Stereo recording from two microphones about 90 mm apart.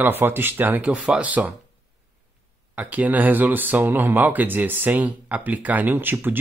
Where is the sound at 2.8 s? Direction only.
15° right (ahead or behind).